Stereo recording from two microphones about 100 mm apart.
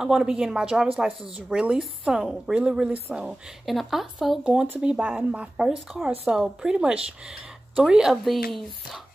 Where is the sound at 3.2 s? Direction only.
5° right (ahead or behind).